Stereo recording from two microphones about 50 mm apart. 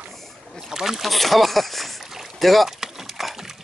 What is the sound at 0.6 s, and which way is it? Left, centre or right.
Boat, centre.